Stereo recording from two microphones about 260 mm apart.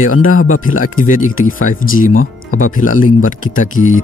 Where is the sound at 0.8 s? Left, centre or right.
Left.